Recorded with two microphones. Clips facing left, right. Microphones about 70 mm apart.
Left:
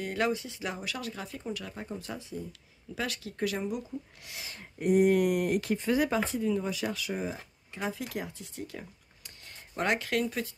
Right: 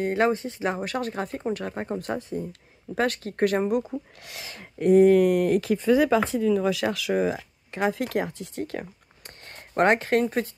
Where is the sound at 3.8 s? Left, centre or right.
Right.